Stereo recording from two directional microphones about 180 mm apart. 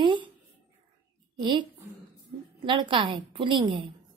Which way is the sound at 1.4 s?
25° right (ahead or behind).